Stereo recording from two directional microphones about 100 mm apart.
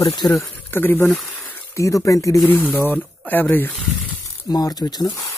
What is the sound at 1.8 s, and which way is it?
Speech, 35° left (ahead or behind).